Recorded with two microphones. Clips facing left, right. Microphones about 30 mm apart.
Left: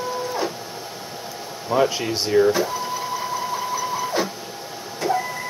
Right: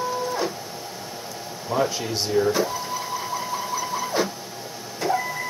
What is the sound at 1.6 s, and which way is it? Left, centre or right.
Speech, left.